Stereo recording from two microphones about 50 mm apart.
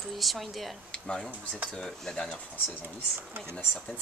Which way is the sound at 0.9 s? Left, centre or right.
Centre.